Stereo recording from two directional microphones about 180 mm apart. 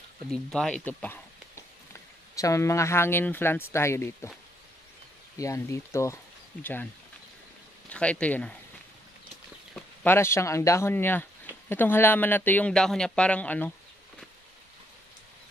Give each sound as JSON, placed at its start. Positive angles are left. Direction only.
{"t": 0.3, "sound": "speech", "side_deg": 5}
{"t": 5.4, "sound": "speech", "side_deg": 15}
{"t": 7.9, "sound": "speech", "side_deg": 5}
{"t": 9.8, "sound": "speech", "side_deg": 10}